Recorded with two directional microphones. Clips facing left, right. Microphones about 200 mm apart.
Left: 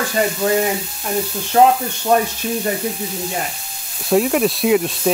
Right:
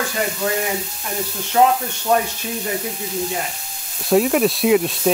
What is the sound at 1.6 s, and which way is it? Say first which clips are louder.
Speech: left 3 dB; 50° left (ahead or behind).